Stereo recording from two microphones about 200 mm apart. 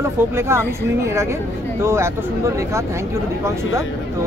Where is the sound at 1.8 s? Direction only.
15° right (ahead or behind).